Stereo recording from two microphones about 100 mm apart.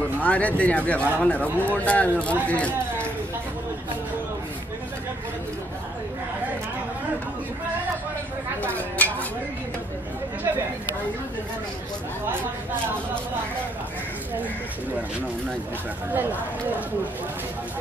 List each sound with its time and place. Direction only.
0.2 s speech: 15° left (ahead or behind)
8.7 s a sound: 15° left (ahead or behind)
16.1 s speech: 20° right (ahead or behind)